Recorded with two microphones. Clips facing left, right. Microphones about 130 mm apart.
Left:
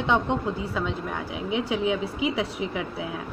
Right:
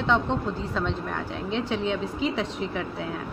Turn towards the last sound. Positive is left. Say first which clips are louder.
# even
turn(degrees=15)  # may be behind; listen again after turning